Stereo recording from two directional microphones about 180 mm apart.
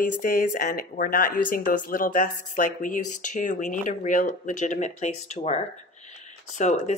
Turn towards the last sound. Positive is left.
turn(degrees=40)  # may be behind; listen again after turning